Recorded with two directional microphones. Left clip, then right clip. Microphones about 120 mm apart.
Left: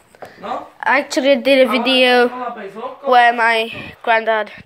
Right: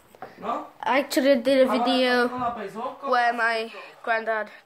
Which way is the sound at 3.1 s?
20° left (ahead or behind).